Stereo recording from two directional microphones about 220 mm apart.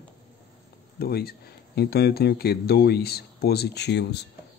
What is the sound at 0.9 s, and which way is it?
Speech, 45° left (ahead or behind).